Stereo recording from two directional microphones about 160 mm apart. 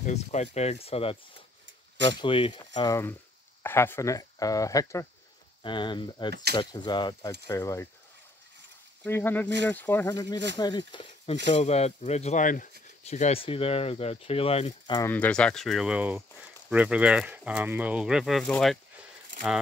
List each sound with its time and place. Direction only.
0.0 s speech: 45° left (ahead or behind)
2.2 s speech: 35° left (ahead or behind)
3.6 s speech: 15° left (ahead or behind)
9.0 s speech: 10° left (ahead or behind)
10.0 s speech: 25° left (ahead or behind)
11.4 s speech: 40° left (ahead or behind)
15.0 s speech: 10° left (ahead or behind)